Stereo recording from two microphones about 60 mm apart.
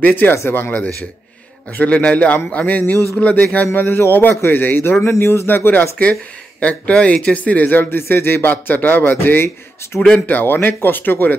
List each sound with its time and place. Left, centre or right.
0.0 s speech: left
0.4 s speech: left
1.9 s speech: centre
5.0 s speech: left
6.6 s speech: left
9.9 s speech: centre
10.2 s speech: left